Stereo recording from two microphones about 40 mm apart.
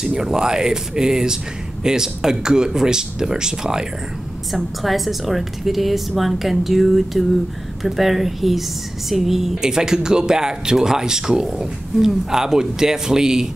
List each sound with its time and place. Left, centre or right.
0.0 s speech: centre
4.5 s a woman's voice: centre